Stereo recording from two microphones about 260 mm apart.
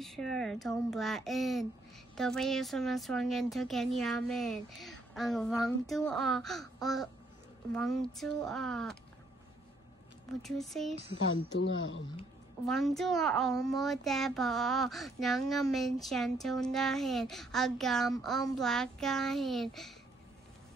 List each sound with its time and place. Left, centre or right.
0.0 s speech: centre
10.4 s speech: centre
11.6 s speech: left
12.6 s speech: centre